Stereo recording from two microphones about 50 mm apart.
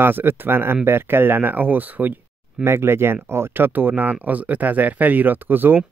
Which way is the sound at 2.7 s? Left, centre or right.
Right.